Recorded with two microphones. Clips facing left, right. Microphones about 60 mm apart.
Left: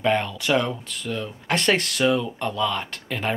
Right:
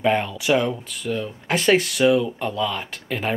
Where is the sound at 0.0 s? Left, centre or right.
Centre.